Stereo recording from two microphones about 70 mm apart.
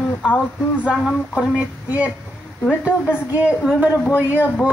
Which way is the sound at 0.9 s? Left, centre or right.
Centre.